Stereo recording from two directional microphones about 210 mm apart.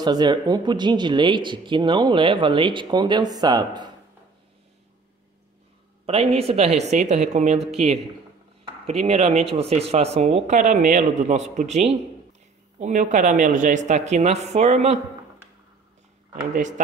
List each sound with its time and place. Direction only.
0.0 s speech: 20° right (ahead or behind)
6.0 s speech: 30° right (ahead or behind)
16.5 s speech: 35° right (ahead or behind)